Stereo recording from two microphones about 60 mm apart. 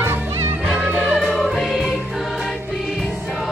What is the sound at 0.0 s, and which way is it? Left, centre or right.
Music, right.